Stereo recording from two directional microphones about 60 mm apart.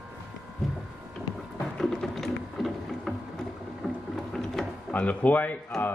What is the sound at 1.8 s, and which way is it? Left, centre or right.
Music, centre.